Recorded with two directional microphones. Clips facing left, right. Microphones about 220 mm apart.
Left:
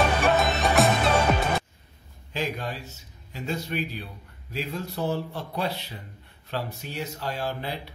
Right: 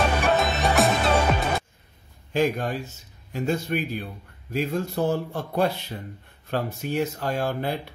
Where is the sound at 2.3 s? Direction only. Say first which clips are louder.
Right 7 dB; 50° right (ahead or behind).